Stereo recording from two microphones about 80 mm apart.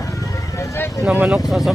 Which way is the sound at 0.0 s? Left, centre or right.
Left.